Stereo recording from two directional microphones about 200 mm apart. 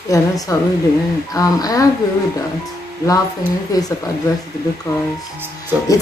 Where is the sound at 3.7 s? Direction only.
20° left (ahead or behind).